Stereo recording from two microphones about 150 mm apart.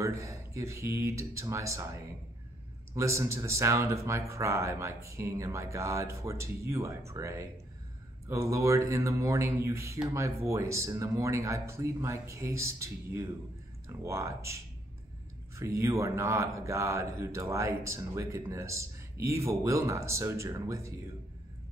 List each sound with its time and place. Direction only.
0.0 s a man's voice: 20° right (ahead or behind)